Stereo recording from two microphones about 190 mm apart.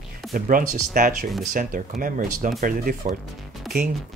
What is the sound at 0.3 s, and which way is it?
Speech, 45° right (ahead or behind).